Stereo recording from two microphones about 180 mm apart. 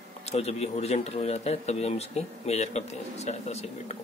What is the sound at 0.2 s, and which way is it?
Speech, 35° left (ahead or behind).